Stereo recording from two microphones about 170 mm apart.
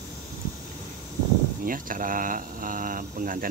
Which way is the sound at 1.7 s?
55° right (ahead or behind).